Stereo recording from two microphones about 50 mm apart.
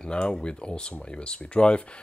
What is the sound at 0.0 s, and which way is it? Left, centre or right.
Speech, centre.